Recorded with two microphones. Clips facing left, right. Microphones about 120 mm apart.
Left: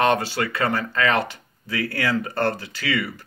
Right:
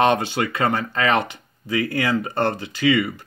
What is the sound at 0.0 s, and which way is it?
Speech, 20° right (ahead or behind).